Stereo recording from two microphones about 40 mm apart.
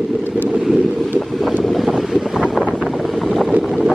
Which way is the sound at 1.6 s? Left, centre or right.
Centre.